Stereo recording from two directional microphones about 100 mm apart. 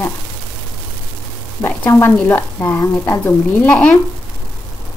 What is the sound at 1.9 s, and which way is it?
A woman's voice, 25° left (ahead or behind).